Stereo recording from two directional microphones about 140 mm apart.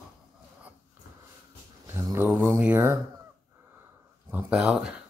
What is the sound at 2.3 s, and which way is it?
Mantra, 15° right (ahead or behind).